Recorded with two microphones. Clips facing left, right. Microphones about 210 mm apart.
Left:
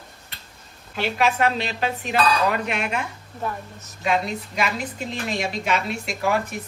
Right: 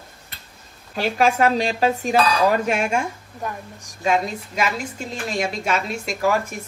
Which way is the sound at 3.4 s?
15° right (ahead or behind).